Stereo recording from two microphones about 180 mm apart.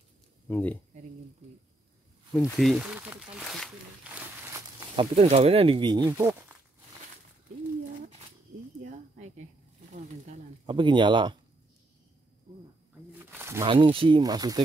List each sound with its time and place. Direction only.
0.5 s speech: 10° left (ahead or behind)
2.5 s speech: centre (ahead or behind)
4.4 s walk: 15° right (ahead or behind)
4.9 s speech: 35° right (ahead or behind); by 6.6 s 15° right (ahead or behind)
8.8 s a sound: 45° right (ahead or behind)
10.7 s speech: 25° right (ahead or behind)
13.2 s a sound: 15° right (ahead or behind)
13.7 s speech: 30° right (ahead or behind)